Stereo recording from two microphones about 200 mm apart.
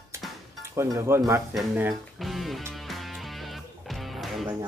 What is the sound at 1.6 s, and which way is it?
Speech, 5° right (ahead or behind).